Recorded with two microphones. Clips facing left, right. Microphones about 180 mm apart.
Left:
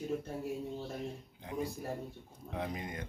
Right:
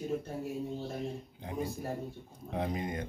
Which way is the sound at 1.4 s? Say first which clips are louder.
Right 1 dB; 30° right (ahead or behind).